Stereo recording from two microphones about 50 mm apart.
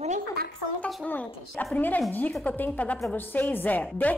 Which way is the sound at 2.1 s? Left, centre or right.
Left.